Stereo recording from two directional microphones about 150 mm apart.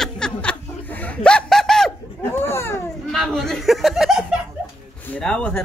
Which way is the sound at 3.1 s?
Centre (ahead or behind).